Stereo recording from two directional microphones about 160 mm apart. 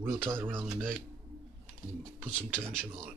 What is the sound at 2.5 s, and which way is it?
Speech, 5° left (ahead or behind).